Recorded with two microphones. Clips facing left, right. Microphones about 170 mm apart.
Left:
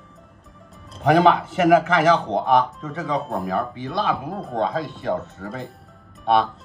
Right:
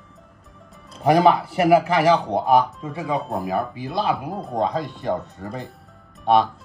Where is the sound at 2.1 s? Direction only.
5° right (ahead or behind).